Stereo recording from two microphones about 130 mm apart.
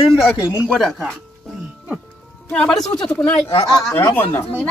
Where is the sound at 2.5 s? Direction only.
5° left (ahead or behind).